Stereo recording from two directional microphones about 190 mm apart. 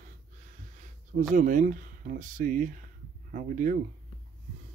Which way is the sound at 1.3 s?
45° right (ahead or behind).